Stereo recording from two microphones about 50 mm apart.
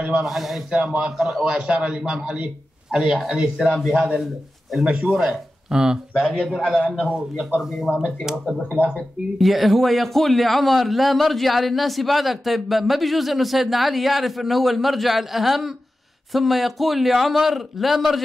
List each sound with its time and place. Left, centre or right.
0.2 s a man's voice: centre
0.7 s speech: centre
1.0 s a man's voice: centre
1.4 s a man's voice: right; by 3.3 s centre
3.3 s a man's voice: centre
5.1 s a man's voice: centre
5.7 s speech: centre
6.8 s a man's voice: left
9.4 s a man's voice: centre